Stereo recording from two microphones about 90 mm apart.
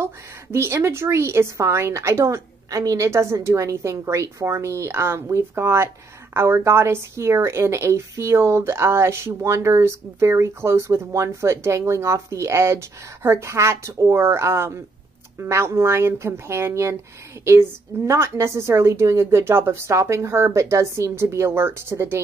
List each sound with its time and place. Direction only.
0.0 s a woman's voice: 30° right (ahead or behind)